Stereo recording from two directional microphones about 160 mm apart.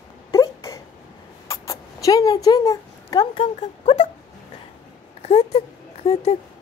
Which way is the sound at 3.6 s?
45° left (ahead or behind).